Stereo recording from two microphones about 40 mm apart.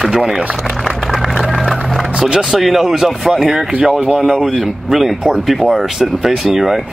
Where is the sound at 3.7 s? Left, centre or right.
Right.